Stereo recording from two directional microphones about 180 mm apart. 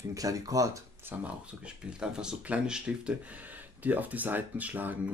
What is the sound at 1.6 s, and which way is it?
Speech, 5° right (ahead or behind).